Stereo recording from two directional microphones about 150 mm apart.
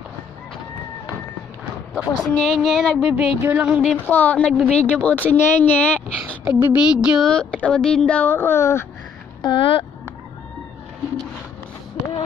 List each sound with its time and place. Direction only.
2.0 s speech: 25° left (ahead or behind)
2.3 s speech: centre (ahead or behind)
3.9 s a woman's voice: 10° left (ahead or behind)
6.4 s speech: 10° right (ahead or behind); by 8.8 s 15° left (ahead or behind)
9.4 s speech: 35° left (ahead or behind)